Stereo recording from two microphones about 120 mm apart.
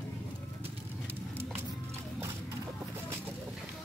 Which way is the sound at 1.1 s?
15° right (ahead or behind).